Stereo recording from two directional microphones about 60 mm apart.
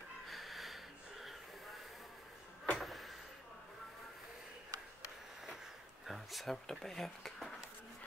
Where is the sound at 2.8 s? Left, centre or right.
Centre.